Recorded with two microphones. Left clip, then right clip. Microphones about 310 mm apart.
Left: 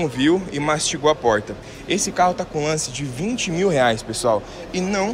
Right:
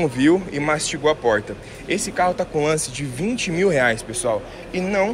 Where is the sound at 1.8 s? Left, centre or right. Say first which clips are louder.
Left 2 dB; left.